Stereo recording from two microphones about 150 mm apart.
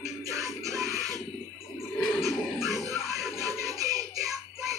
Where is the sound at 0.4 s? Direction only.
20° right (ahead or behind).